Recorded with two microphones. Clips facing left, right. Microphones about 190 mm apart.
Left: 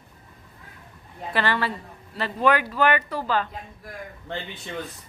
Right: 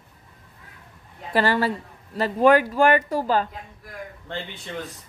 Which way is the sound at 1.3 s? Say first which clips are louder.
Right 4 dB; 40° right (ahead or behind).